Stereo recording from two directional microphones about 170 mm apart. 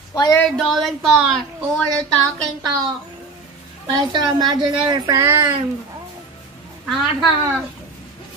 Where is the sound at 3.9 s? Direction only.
25° right (ahead or behind).